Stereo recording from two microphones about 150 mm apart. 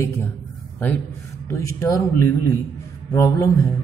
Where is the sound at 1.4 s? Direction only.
20° left (ahead or behind).